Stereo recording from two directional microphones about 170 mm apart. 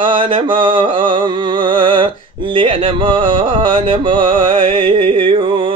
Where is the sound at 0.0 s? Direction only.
30° right (ahead or behind).